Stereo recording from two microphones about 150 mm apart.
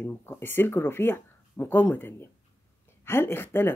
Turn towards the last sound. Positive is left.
turn(degrees=15)  # may be behind; listen again after turning